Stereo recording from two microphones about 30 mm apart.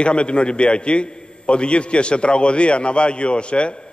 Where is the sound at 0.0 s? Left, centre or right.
Left.